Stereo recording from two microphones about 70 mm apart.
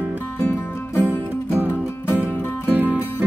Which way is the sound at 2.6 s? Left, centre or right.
Right.